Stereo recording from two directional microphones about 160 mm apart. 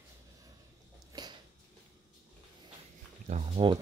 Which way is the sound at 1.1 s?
25° right (ahead or behind).